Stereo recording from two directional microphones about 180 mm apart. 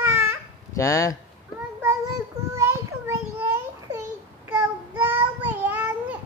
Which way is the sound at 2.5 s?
15° right (ahead or behind).